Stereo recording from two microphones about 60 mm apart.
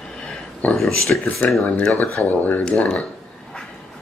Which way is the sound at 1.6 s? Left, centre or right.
Centre.